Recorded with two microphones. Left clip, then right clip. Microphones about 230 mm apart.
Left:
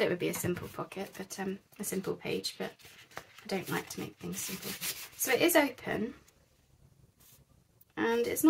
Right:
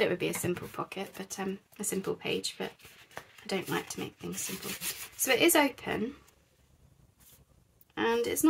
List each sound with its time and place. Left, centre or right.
0.0 s a woman's voice: centre
7.9 s speech: centre